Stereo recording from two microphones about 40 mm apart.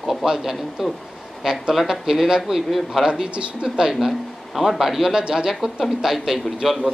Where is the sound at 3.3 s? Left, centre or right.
Right.